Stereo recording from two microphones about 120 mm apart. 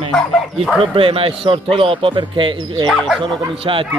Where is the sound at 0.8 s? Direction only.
50° right (ahead or behind).